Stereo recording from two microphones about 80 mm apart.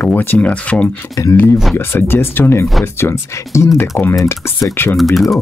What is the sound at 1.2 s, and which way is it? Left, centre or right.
Speech, left.